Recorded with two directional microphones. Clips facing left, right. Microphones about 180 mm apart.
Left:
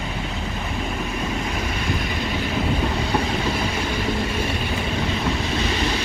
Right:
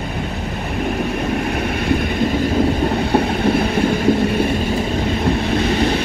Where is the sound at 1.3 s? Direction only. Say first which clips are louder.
Right 6 dB; 60° right (ahead or behind).